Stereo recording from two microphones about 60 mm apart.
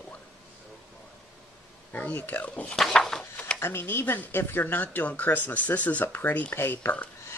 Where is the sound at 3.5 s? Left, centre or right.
Left.